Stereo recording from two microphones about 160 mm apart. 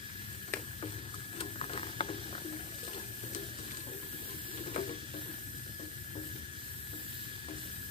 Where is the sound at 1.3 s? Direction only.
40° left (ahead or behind).